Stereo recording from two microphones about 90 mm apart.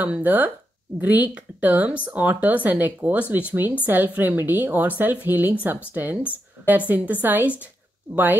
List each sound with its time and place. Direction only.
0.0 s a woman's voice: 20° right (ahead or behind)